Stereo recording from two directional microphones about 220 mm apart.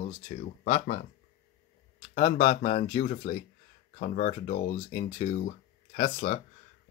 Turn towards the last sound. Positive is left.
turn(degrees=30)  # may be behind; listen again after turning